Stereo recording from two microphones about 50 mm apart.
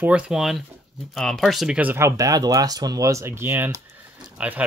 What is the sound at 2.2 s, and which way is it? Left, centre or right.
Speech, right.